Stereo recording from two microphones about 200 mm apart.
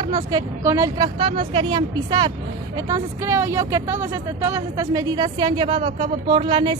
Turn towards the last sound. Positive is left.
turn(degrees=-25)  # may be behind; listen again after turning